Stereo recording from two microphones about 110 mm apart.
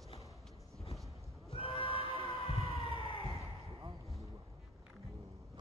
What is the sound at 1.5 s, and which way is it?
Music, 55° left (ahead or behind).